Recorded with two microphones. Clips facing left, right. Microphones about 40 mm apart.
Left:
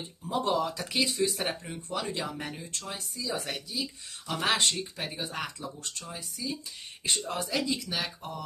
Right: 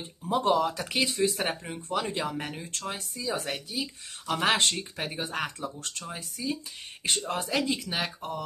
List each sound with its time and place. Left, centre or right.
0.3 s speech: right
7.2 s speech: right
7.4 s speech: right